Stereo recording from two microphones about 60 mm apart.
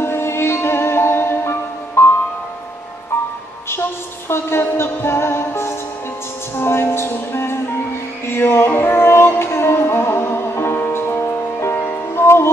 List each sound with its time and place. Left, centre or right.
0.0 s music: left
4.3 s music: left
11.8 s music: left